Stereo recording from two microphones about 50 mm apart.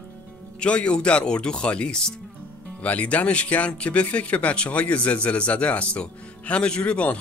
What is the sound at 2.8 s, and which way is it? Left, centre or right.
Speech, left.